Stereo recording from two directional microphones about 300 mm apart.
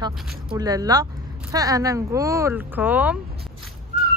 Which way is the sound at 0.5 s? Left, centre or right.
Centre.